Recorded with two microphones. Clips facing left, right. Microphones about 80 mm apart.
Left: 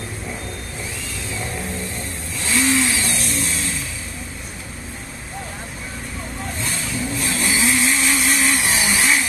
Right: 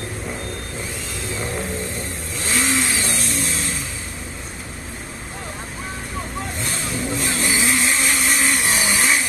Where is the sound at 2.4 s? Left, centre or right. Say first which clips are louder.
Left 3 dB; right.